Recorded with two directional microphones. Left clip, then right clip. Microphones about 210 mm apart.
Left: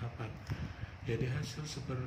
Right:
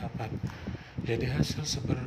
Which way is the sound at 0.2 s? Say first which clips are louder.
Right 8 dB; 35° right (ahead or behind).